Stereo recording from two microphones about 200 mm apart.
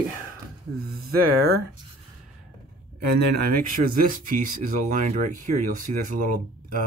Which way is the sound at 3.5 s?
45° right (ahead or behind).